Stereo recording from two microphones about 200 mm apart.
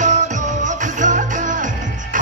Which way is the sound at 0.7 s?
40° right (ahead or behind).